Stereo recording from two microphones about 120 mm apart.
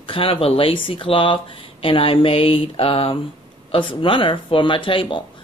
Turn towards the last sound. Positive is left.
turn(degrees=45)  # may be behind; listen again after turning